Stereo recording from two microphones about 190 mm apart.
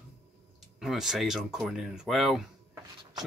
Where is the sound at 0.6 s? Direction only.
Centre (ahead or behind).